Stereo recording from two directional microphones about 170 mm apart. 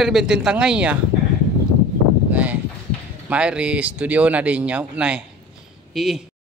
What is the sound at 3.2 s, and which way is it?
Speech, 5° right (ahead or behind).